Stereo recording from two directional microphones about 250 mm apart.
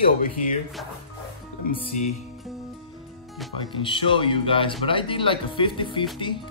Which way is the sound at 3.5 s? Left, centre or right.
Centre.